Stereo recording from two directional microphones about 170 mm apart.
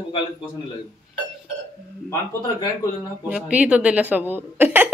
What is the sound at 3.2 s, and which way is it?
Speech, 5° right (ahead or behind).